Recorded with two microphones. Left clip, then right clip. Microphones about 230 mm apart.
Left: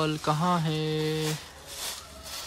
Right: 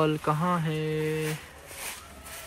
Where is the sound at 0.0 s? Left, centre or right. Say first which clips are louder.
Right 1 dB; centre.